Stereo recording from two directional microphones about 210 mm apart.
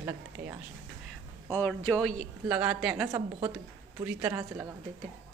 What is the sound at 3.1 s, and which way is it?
A woman's voice, 15° right (ahead or behind).